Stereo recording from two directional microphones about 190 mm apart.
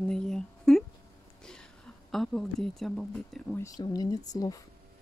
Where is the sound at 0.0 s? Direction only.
5° left (ahead or behind).